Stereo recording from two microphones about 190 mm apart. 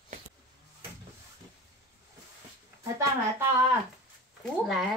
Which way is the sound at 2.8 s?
15° right (ahead or behind).